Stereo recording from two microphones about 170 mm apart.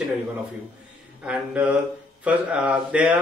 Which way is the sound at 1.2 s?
5° right (ahead or behind).